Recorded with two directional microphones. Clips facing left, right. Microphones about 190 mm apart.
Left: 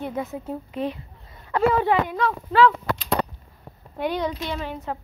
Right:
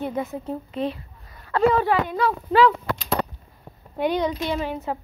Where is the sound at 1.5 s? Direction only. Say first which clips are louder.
Right 1 dB; 15° left (ahead or behind).